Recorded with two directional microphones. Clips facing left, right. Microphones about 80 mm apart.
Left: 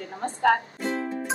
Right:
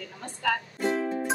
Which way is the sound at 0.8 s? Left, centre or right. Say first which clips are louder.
Right 2 dB; centre.